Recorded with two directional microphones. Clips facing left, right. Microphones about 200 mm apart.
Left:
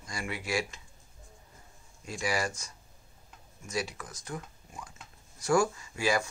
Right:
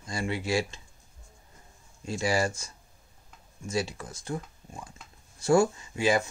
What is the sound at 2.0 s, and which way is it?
Speech, 25° right (ahead or behind).